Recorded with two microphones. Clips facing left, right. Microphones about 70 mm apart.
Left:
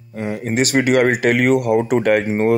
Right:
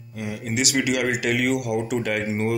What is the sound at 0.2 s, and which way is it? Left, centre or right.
Speech, left.